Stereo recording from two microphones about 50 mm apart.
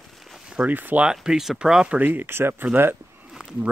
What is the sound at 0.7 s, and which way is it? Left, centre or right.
Speech, right.